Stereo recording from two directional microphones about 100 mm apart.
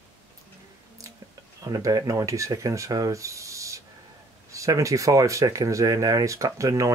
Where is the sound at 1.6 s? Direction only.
40° right (ahead or behind).